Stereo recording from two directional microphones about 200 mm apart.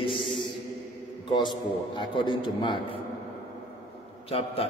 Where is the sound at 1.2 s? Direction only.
20° left (ahead or behind).